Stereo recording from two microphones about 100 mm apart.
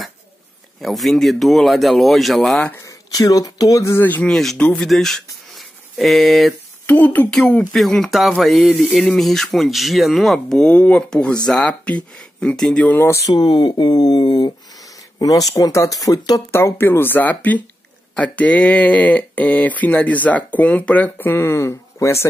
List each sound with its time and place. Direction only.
0.7 s speech: centre (ahead or behind)
2.8 s speech: 35° left (ahead or behind); by 4.3 s 20° left (ahead or behind)
4.3 s speech: 5° left (ahead or behind)
6.9 s speech: 20° left (ahead or behind)
7.3 s speech: 5° left (ahead or behind)
12.8 s speech: 20° left (ahead or behind)
13.3 s speech: 45° left (ahead or behind)
16.5 s speech: 25° left (ahead or behind)